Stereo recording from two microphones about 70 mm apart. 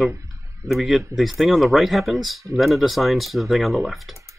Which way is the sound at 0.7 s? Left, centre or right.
Centre.